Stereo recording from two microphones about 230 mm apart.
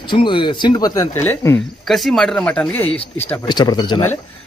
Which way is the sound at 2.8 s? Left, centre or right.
Left.